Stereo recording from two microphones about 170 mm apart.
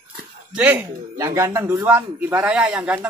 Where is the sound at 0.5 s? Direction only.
10° right (ahead or behind).